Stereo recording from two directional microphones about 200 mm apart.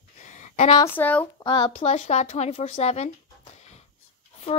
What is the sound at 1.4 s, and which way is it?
Speech, 25° left (ahead or behind).